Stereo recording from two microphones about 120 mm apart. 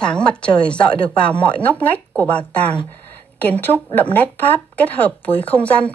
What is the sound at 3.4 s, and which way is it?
A woman's voice, 15° left (ahead or behind).